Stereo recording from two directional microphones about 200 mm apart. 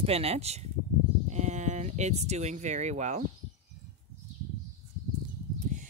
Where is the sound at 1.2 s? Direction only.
35° right (ahead or behind).